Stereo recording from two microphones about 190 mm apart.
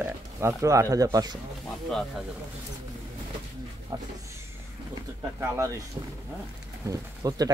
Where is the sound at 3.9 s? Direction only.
20° right (ahead or behind).